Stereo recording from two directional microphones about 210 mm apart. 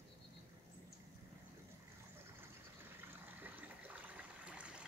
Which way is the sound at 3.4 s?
5° right (ahead or behind).